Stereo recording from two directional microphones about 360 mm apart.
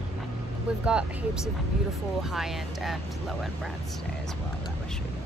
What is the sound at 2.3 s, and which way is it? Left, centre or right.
Speech, centre.